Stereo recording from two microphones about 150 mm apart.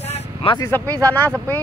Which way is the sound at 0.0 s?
40° left (ahead or behind).